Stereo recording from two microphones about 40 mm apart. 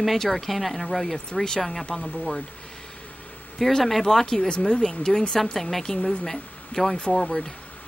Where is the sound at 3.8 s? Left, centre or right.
Centre.